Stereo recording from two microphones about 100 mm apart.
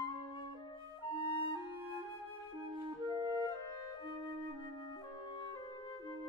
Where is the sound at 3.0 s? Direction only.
40° right (ahead or behind).